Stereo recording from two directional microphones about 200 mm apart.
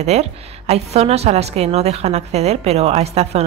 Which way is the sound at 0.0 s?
30° right (ahead or behind).